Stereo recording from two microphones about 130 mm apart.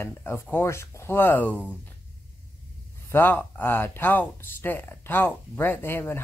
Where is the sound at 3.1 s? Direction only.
15° left (ahead or behind).